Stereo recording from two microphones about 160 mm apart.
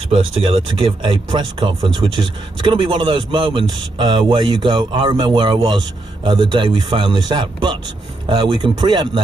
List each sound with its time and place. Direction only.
0.1 s speech: 35° right (ahead or behind)